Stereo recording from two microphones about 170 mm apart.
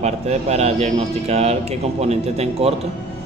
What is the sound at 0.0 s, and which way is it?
Speech, 40° right (ahead or behind).